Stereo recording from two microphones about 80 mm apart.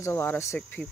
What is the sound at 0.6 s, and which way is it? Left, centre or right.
Speech, centre.